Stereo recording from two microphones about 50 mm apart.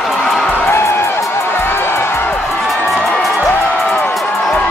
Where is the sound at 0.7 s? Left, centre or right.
Left.